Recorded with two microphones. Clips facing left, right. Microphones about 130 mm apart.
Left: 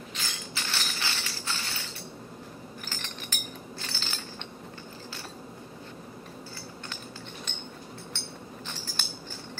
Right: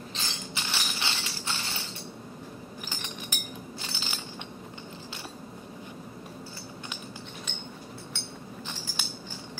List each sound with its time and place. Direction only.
0.1 s a sound: 30° right (ahead or behind)
2.9 s chink: 15° right (ahead or behind)
3.8 s glass: 15° right (ahead or behind)